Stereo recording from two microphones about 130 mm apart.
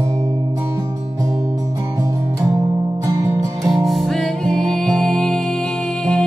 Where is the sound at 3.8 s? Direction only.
Centre (ahead or behind).